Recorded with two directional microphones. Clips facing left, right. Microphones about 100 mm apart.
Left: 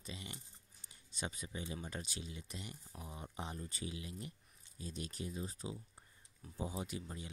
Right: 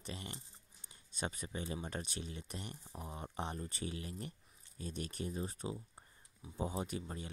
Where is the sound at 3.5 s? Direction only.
45° right (ahead or behind).